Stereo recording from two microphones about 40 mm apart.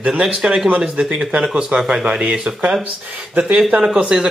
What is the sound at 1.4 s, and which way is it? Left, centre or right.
Speech, centre.